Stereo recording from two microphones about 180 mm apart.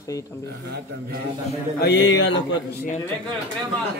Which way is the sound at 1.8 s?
70° left (ahead or behind).